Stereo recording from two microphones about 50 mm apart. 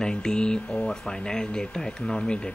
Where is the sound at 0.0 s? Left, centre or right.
Centre.